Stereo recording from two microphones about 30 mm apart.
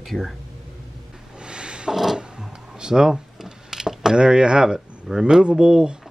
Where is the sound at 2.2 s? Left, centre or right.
Right.